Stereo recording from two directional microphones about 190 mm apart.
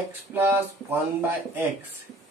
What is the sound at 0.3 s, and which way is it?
Speech, 10° right (ahead or behind).